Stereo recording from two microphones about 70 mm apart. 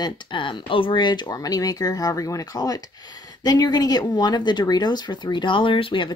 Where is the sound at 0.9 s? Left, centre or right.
Left.